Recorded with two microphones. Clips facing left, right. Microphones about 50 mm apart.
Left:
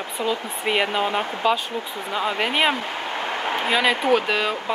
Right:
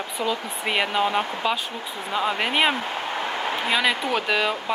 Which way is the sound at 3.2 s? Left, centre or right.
Left.